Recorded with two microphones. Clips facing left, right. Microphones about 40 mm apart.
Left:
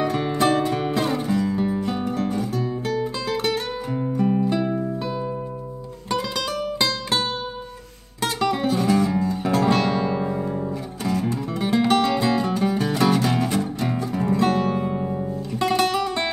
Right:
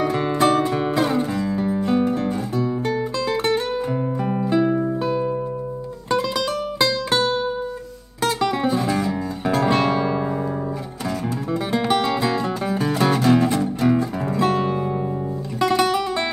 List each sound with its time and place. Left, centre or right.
0.1 s music: centre
3.5 s music: centre
8.3 s music: centre
9.6 s guitar: right
9.8 s music: centre
11.7 s music: centre